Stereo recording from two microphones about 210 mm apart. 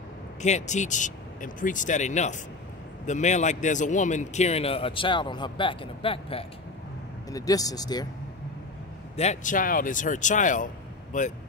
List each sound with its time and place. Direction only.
0.4 s a man's voice: 35° left (ahead or behind); by 8.1 s 20° left (ahead or behind)
9.1 s a man's voice: 30° left (ahead or behind)